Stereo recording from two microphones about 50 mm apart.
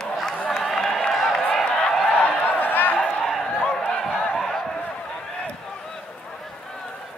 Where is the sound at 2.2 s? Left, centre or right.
Left.